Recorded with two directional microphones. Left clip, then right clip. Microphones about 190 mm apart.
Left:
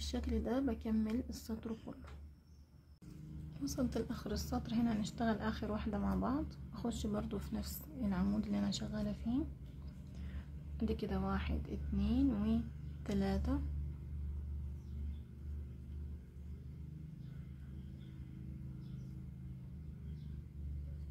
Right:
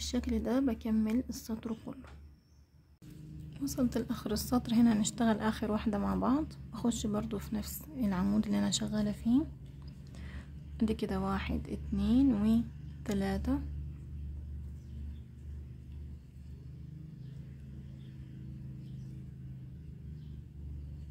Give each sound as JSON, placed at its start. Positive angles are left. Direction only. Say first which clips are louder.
{"t": 0.0, "sound": "a woman's voice", "louder": "right 6 dB", "side_deg": -15}
{"t": 3.5, "sound": "a woman's voice", "louder": "right 5 dB", "side_deg": -15}
{"t": 10.8, "sound": "a woman's voice", "louder": "right 6 dB", "side_deg": -20}